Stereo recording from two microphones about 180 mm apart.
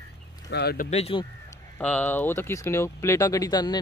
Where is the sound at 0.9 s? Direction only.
35° left (ahead or behind).